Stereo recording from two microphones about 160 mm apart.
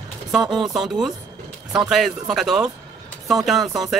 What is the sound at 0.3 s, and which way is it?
Speech, 5° right (ahead or behind).